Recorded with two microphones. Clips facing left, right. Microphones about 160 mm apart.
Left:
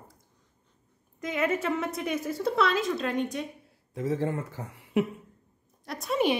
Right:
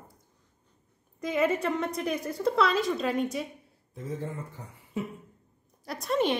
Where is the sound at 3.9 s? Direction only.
85° left.